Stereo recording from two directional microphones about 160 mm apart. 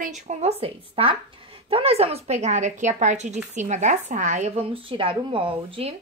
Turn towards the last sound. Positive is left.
turn(degrees=-35)  # may be behind; listen again after turning